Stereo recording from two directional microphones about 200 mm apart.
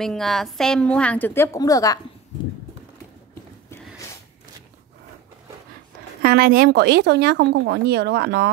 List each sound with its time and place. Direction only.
0.0 s a woman's voice: centre (ahead or behind); by 2.0 s 15° left (ahead or behind)
6.2 s speech: 50° right (ahead or behind)